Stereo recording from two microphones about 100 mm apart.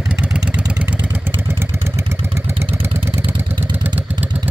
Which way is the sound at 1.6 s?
25° right (ahead or behind).